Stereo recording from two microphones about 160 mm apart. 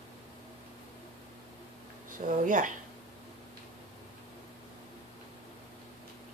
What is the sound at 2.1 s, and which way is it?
Speech, 55° right (ahead or behind).